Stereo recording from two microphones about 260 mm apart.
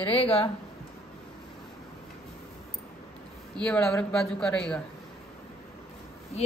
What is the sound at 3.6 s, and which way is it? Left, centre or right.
A woman's voice, centre.